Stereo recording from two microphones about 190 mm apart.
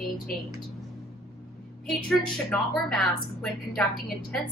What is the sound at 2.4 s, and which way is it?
A woman's voice, 5° left (ahead or behind).